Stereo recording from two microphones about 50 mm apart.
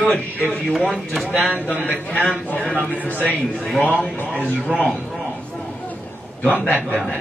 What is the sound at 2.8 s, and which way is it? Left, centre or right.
Speech, right.